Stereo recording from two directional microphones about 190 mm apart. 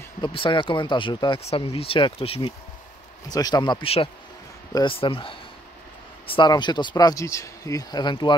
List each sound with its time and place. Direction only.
0.2 s speech: 25° left (ahead or behind)